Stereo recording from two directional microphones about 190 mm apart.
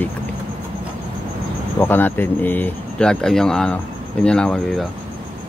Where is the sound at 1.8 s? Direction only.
10° left (ahead or behind).